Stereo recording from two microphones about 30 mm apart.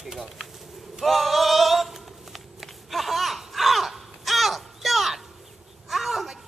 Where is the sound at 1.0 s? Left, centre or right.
Centre.